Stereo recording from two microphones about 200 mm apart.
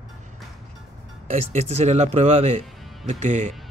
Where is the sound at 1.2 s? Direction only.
35° right (ahead or behind).